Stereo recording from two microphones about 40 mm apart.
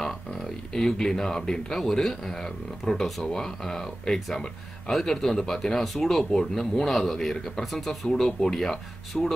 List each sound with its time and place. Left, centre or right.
0.4 s speech: centre